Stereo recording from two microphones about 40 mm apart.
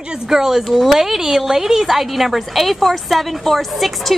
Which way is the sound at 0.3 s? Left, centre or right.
Centre.